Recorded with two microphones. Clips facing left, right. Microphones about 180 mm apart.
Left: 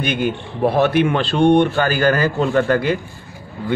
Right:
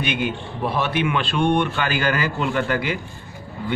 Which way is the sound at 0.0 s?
45° left (ahead or behind).